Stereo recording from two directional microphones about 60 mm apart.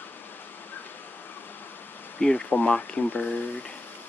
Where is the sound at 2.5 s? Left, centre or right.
Left.